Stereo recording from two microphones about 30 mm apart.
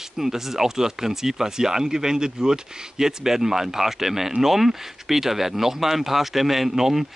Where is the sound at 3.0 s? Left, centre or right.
Centre.